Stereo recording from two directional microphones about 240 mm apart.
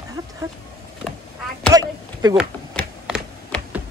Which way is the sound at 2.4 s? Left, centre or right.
Centre.